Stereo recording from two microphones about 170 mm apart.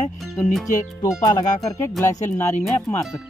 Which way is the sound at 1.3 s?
20° left (ahead or behind).